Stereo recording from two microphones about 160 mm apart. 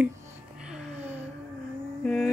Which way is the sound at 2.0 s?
5° left (ahead or behind).